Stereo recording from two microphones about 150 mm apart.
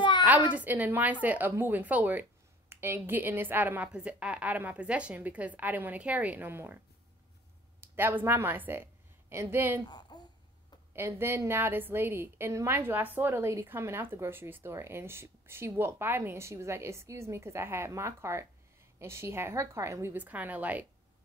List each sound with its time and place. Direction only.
0.5 s a woman's voice: 10° right (ahead or behind)
7.8 s a woman's voice: 15° right (ahead or behind)
9.8 s a sound: 30° left (ahead or behind)
10.9 s a woman's voice: 15° right (ahead or behind)